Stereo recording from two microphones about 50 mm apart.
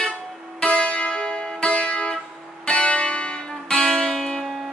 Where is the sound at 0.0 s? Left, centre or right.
Centre.